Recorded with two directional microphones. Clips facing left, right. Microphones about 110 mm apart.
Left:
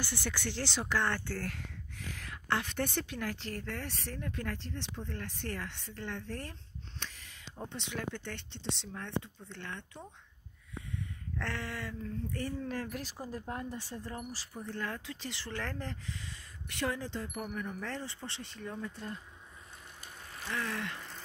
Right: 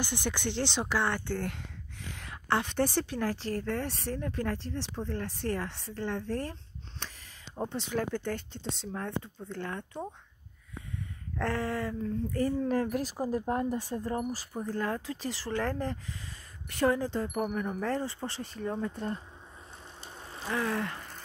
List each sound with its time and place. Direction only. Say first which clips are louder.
0.0 s speech: right 5 dB; 20° right (ahead or behind); by 6.5 s 35° right (ahead or behind)
7.5 s speech: right 8 dB; 45° right (ahead or behind)
11.3 s speech: right 8 dB; 35° right (ahead or behind)
20.2 s speech: right 6 dB; 30° right (ahead or behind)